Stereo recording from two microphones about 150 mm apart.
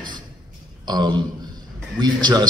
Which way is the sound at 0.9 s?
30° right (ahead or behind).